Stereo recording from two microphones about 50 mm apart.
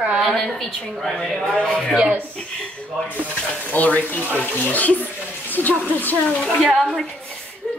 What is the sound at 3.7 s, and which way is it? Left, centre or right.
Speech, left.